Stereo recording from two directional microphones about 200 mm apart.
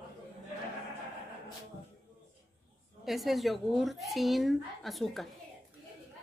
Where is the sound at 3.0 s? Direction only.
Centre (ahead or behind).